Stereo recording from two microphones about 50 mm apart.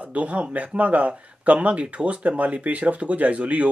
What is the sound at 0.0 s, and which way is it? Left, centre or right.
Speech, right.